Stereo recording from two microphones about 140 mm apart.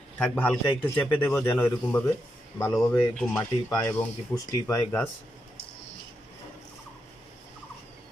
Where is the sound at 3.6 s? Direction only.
15° left (ahead or behind).